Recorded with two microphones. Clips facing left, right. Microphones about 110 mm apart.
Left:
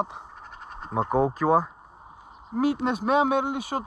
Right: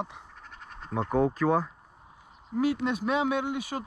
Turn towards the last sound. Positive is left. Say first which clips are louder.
# left 4 dB
turn(degrees=30)  # may be behind; listen again after turning